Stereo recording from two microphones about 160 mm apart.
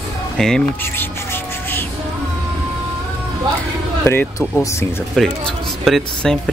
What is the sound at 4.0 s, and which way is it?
Speech, 15° left (ahead or behind).